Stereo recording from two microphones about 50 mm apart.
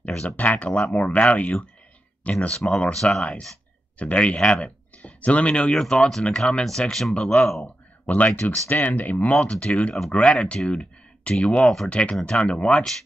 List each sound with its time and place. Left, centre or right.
0.4 s speech: left
2.5 s speech: centre
4.0 s speech: left
6.9 s speech: centre
7.6 s a sound: left
8.4 s speech: left
9.3 s speech: centre
10.2 s speech: centre
10.7 s speech: left